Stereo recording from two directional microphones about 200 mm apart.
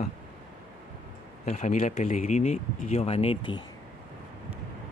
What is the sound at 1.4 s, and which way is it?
Speech, 35° left (ahead or behind).